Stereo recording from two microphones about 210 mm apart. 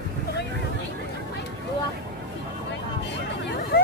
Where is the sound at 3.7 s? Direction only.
45° left (ahead or behind).